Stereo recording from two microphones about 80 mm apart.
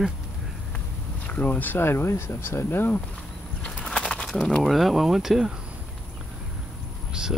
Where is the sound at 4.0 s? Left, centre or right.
Centre.